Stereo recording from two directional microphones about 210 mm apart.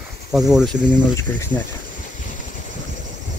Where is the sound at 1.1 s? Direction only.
15° left (ahead or behind).